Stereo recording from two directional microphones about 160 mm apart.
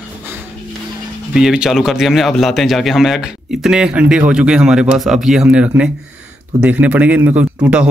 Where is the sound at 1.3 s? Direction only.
5° right (ahead or behind).